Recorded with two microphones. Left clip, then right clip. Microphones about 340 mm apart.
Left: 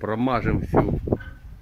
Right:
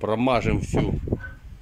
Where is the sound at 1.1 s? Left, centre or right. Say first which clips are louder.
Left 4 dB; left.